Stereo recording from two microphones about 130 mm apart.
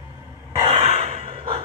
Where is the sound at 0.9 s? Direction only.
55° right (ahead or behind).